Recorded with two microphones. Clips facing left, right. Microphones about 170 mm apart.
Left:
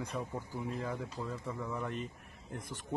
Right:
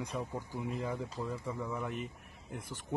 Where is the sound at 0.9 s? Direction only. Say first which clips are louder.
Right 2 dB; 5° right (ahead or behind).